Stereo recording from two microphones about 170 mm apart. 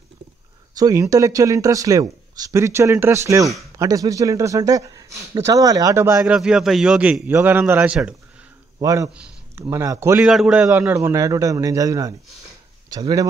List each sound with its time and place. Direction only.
0.7 s speech: 20° right (ahead or behind)
6.3 s a man's voice: 5° right (ahead or behind)
8.7 s speech: 20° right (ahead or behind)
10.2 s a man's voice: 5° right (ahead or behind); by 13.3 s 20° right (ahead or behind)